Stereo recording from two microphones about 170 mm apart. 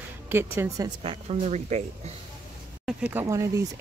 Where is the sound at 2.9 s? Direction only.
10° right (ahead or behind).